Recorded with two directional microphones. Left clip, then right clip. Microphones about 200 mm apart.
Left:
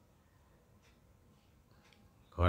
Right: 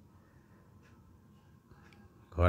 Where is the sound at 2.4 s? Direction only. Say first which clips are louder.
Right 3 dB; 15° right (ahead or behind).